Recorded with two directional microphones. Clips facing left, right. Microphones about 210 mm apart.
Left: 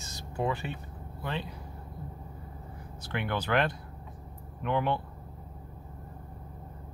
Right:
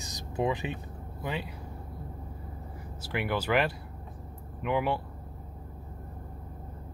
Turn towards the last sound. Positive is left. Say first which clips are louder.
# right 1 dB
turn(degrees=-5)  # may be behind; listen again after turning